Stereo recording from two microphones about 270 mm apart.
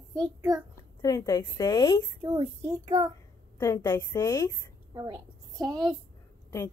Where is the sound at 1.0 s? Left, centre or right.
Centre.